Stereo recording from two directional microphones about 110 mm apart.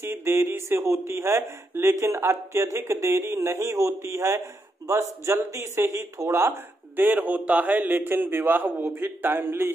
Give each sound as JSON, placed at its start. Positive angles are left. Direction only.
{"t": 0.0, "sound": "speech", "side_deg": -25}